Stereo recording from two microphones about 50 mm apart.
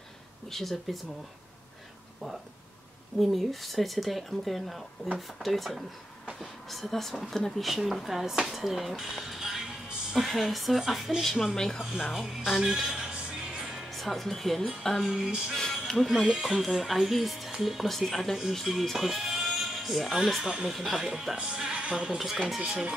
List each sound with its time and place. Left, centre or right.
0.5 s speech: centre
3.2 s speech: centre
11.5 s speech: centre
11.8 s speech: centre
12.9 s music: centre
13.9 s speech: centre
15.0 s speech: centre
15.5 s music: centre
16.4 s speech: centre
20.9 s speech: centre
22.2 s speech: centre